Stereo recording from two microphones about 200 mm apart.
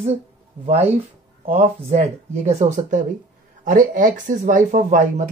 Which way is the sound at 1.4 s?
30° right (ahead or behind).